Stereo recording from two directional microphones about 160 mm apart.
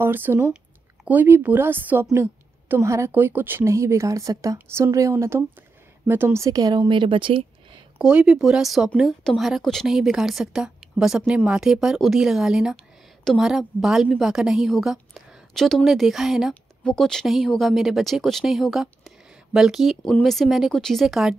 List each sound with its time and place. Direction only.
0.0 s a woman's voice: 15° right (ahead or behind); by 7.4 s 30° right (ahead or behind)
8.0 s a woman's voice: 5° right (ahead or behind)